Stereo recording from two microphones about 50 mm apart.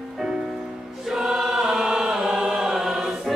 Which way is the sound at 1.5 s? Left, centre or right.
Centre.